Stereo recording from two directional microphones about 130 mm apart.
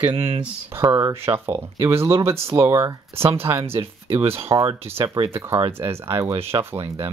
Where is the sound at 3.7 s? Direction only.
45° right (ahead or behind).